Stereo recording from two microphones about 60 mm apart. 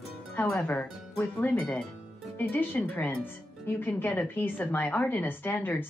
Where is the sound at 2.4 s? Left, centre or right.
Left.